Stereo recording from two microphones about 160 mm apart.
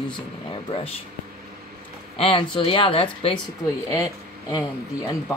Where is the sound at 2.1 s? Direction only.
35° left (ahead or behind).